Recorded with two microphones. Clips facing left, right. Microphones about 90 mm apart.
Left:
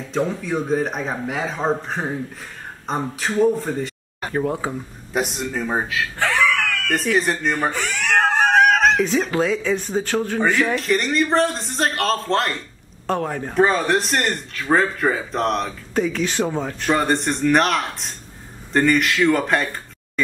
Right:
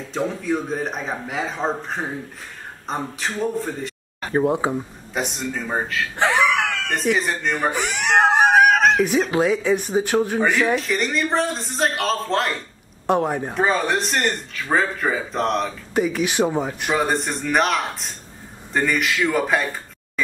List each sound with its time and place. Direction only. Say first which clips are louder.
0.1 s speech: left 1 dB; centre (ahead or behind)
4.3 s speech: right 3 dB; 20° right (ahead or behind)
5.1 s speech: left 2 dB; centre (ahead or behind)
6.1 s screaming: right 2 dB; 20° right (ahead or behind)
6.9 s speech: left 3 dB; centre (ahead or behind)
7.7 s a sound: right 1 dB; 20° right (ahead or behind)
8.5 s dog: even; centre (ahead or behind)
9.3 s speech: right 1 dB; 15° right (ahead or behind)
10.6 s speech: left 1 dB; centre (ahead or behind)
13.0 s speech: right 3 dB; 20° right (ahead or behind)
13.6 s speech: left 4 dB; centre (ahead or behind)
15.9 s speech: even; 10° right (ahead or behind)
16.9 s speech: left 2 dB; centre (ahead or behind)